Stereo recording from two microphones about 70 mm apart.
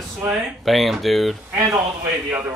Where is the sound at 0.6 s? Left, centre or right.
Centre.